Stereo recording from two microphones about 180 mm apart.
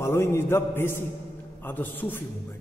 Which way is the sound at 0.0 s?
15° left (ahead or behind).